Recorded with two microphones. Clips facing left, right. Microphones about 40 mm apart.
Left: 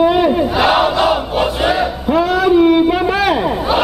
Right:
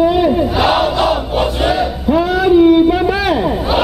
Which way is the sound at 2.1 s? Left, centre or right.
Centre.